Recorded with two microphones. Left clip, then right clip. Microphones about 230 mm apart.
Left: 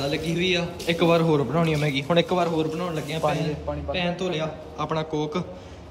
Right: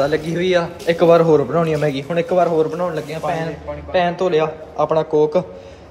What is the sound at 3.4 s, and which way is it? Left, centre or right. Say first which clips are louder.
A man's voice: right 3 dB; left.